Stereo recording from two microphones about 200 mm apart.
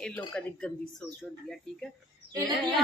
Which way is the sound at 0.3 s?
5° left (ahead or behind).